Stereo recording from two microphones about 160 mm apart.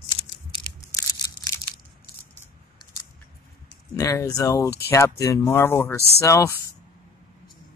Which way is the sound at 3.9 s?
20° left (ahead or behind).